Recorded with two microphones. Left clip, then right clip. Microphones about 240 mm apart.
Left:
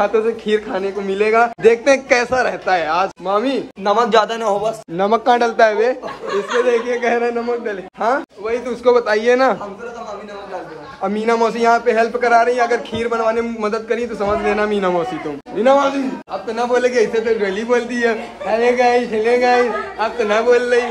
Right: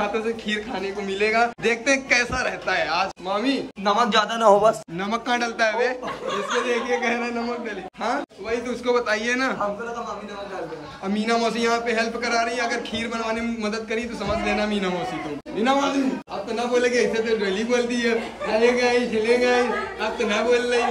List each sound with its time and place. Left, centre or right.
0.0 s a man's voice: centre
3.8 s a man's voice: left
4.9 s a man's voice: centre
8.8 s a man's voice: centre
11.1 s a man's voice: centre